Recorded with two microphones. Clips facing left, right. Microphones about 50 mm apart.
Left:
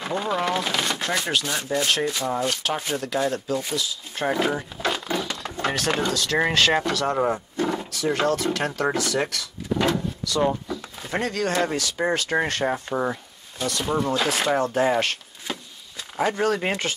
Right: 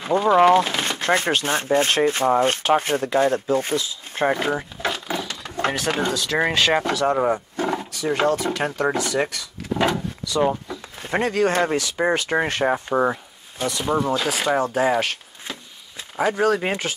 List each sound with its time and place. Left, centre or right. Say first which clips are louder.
0.1 s speech: right 10 dB; right
4.4 s speech: even; centre
11.1 s speech: right 4 dB; right
14.1 s speech: right 1 dB; centre
16.2 s speech: right 3 dB; centre